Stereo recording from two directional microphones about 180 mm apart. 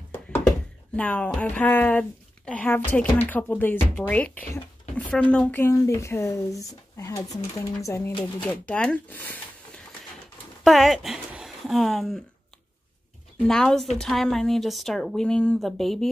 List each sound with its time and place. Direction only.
0.9 s speech: 5° left (ahead or behind)
10.6 s speech: centre (ahead or behind)
13.5 s speech: 5° left (ahead or behind)